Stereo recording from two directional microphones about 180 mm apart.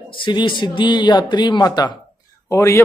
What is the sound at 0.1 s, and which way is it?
A man's voice, 25° left (ahead or behind).